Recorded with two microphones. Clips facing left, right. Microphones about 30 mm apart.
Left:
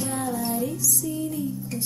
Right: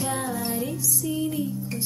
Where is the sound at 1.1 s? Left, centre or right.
Right.